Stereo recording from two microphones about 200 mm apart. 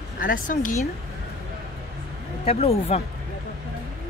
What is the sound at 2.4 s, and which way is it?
Speech, 30° left (ahead or behind).